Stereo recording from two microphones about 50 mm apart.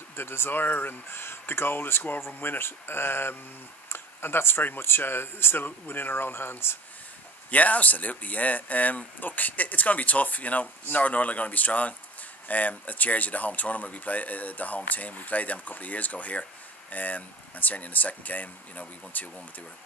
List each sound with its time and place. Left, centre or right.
0.1 s speech: left
7.5 s speech: left